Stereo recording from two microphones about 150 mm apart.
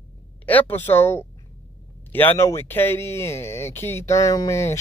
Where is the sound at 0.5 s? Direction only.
10° left (ahead or behind).